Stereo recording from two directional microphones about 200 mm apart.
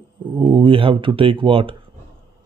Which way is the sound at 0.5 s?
25° right (ahead or behind).